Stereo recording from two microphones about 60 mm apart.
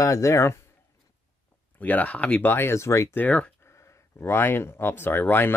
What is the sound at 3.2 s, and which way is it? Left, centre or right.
Speech, left.